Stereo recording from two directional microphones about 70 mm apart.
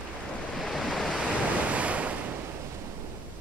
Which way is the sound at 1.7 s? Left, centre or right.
Centre.